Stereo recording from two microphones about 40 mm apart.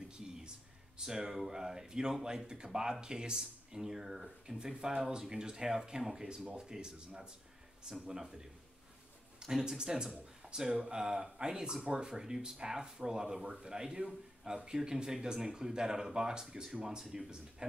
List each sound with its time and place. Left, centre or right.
0.9 s speech: centre
8.1 s speech: centre
9.5 s speech: centre